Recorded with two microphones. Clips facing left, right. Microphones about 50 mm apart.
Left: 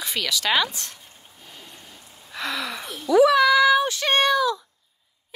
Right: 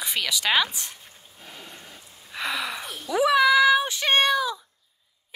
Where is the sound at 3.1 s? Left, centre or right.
Centre.